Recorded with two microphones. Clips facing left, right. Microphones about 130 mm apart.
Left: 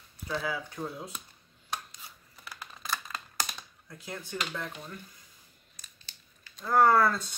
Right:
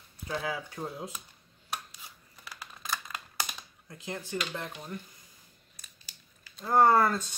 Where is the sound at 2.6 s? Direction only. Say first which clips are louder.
Left 1 dB; 15° right (ahead or behind).